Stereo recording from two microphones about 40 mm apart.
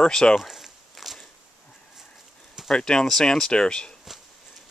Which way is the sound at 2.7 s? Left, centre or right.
Centre.